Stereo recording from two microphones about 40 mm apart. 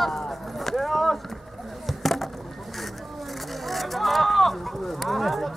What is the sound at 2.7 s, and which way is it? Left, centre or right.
Vehicle, centre.